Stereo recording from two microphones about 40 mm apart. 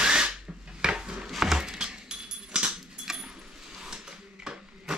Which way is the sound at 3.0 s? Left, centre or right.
Centre.